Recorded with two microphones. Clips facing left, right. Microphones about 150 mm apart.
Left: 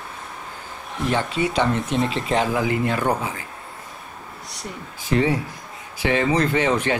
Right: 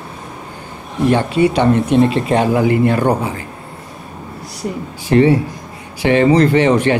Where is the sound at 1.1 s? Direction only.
60° right (ahead or behind).